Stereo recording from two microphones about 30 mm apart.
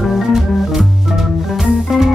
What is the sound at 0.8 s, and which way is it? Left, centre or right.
Music, centre.